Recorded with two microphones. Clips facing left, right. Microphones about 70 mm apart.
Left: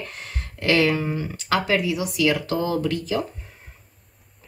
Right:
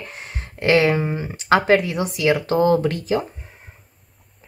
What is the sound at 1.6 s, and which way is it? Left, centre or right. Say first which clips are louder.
Speech: right 5 dB; right.